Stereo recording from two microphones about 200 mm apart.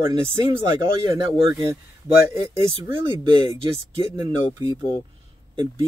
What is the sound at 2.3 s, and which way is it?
Speech, 15° right (ahead or behind).